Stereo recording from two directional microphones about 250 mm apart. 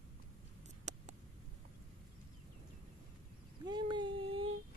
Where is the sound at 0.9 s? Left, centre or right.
Right.